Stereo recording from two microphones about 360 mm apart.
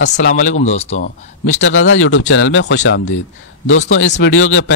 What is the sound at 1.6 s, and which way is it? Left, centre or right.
Speech, left.